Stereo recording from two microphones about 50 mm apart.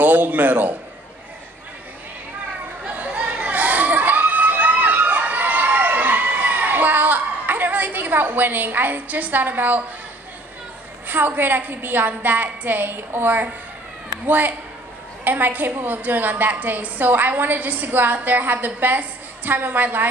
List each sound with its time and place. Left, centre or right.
0.0 s a man's voice: right
2.9 s crowd: right
11.1 s a woman's voice: right